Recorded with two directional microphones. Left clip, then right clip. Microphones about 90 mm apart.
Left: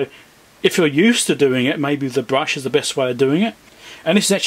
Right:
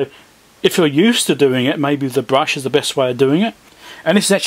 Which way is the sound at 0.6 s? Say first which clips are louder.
Right 2 dB; 30° right (ahead or behind).